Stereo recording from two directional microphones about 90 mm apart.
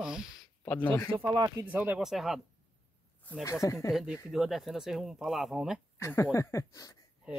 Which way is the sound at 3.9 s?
5° right (ahead or behind).